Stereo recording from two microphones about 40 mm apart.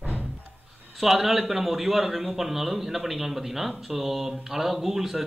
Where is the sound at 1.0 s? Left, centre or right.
Centre.